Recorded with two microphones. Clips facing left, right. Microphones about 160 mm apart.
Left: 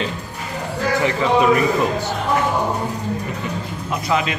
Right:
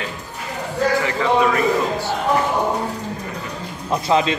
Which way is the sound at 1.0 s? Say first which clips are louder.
Left 2 dB; 20° left (ahead or behind).